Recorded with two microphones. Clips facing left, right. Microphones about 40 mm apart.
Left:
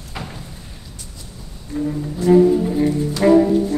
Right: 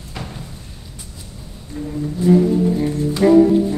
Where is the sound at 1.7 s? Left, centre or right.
Centre.